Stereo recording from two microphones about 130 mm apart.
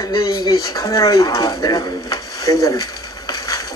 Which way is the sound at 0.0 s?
30° left (ahead or behind).